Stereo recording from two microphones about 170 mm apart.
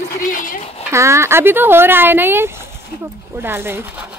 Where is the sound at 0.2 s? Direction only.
50° left (ahead or behind).